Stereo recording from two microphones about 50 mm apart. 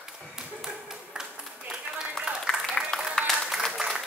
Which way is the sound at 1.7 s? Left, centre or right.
Centre.